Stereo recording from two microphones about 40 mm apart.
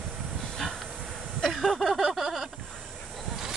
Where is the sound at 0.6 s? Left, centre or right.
Centre.